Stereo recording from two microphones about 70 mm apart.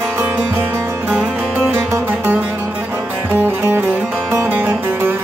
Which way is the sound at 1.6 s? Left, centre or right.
Right.